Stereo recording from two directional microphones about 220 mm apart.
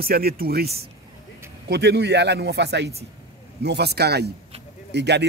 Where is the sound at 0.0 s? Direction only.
45° right (ahead or behind).